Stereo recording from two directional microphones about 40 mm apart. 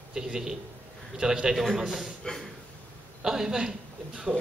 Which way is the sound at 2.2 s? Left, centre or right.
Left.